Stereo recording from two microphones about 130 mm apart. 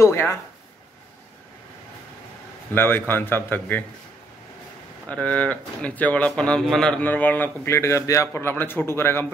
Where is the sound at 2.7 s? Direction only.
15° left (ahead or behind).